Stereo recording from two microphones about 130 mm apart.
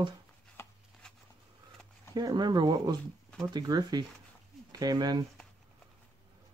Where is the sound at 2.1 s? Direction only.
35° right (ahead or behind).